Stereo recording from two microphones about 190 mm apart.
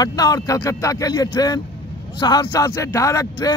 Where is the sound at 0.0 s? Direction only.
20° left (ahead or behind).